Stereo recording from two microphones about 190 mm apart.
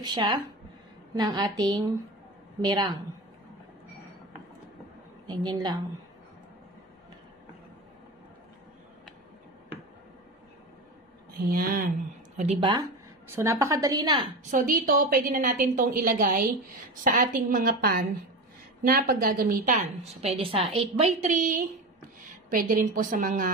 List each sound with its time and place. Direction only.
0.0 s a woman's voice: 25° right (ahead or behind)
5.2 s a woman's voice: 25° right (ahead or behind)
11.4 s a woman's voice: 50° right (ahead or behind)
12.4 s a woman's voice: 30° right (ahead or behind)
13.3 s a woman's voice: 15° right (ahead or behind)
14.5 s a woman's voice: 45° right (ahead or behind); by 20.8 s 30° right (ahead or behind)
21.0 s a woman's voice: 40° right (ahead or behind)